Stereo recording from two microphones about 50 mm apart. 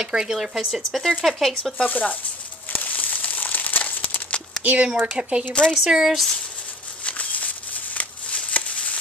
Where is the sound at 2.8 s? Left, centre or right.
Left.